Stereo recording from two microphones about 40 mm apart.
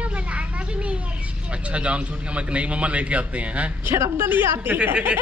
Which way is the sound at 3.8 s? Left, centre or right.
Right.